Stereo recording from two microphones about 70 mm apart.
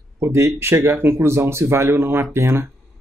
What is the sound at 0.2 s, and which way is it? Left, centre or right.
Speech, right.